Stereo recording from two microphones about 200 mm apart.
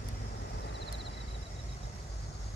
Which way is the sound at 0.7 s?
60° left (ahead or behind).